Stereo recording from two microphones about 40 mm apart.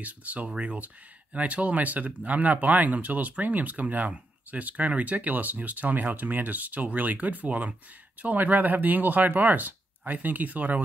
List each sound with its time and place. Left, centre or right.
0.0 s speech: right